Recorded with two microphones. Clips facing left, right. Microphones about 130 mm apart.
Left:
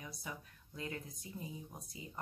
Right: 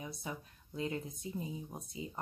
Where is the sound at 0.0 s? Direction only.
25° right (ahead or behind).